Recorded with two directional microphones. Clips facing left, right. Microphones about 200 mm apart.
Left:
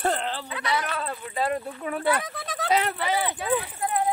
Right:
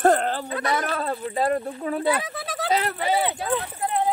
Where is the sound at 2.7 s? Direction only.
35° right (ahead or behind).